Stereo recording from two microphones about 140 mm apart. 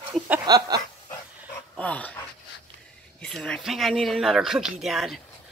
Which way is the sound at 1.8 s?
10° left (ahead or behind).